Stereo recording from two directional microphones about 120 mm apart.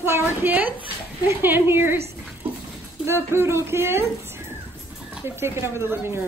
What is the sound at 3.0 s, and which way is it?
A woman's voice, 20° right (ahead or behind).